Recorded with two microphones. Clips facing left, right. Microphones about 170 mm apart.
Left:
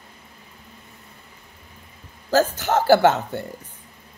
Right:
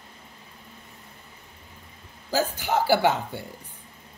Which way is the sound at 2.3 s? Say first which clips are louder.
Left 6 dB; 10° right (ahead or behind).